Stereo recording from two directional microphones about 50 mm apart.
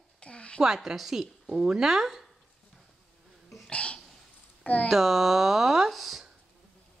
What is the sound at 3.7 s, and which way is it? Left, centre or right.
Speech, left.